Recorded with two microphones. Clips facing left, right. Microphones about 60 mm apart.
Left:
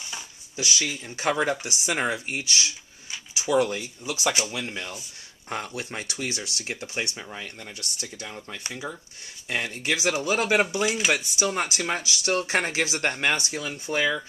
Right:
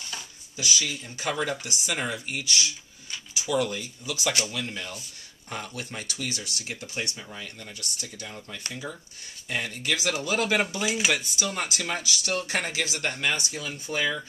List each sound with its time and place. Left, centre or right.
0.8 s speech: left
8.6 s speech: centre